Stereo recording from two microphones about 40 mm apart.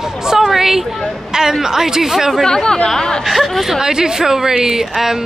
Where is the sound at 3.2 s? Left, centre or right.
Centre.